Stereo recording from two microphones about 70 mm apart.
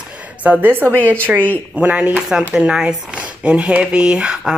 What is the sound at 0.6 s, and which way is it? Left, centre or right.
A woman's voice, right.